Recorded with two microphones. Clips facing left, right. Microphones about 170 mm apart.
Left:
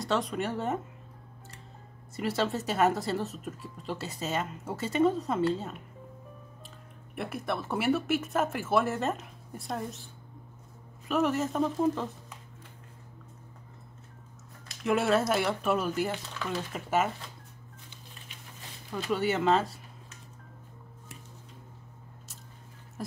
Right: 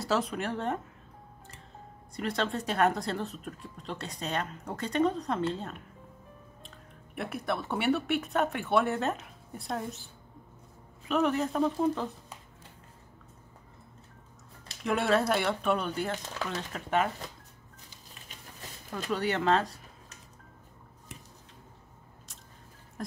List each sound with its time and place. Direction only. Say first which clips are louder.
0.0 s speech: even; centre (ahead or behind)
2.1 s speech: left 2 dB; 5° left (ahead or behind)
7.2 s speech: even; centre (ahead or behind)
14.8 s speech: left 1 dB; centre (ahead or behind)
19.0 s speech: left 1 dB; centre (ahead or behind)
23.0 s music: even; 5° left (ahead or behind)